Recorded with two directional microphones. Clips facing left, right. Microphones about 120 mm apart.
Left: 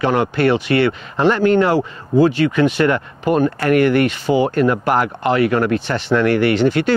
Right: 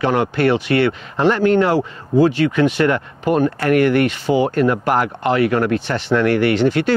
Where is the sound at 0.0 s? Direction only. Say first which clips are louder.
Left 1 dB; 25° left (ahead or behind).